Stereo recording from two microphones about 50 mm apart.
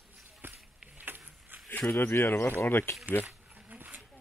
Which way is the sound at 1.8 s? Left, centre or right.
Left.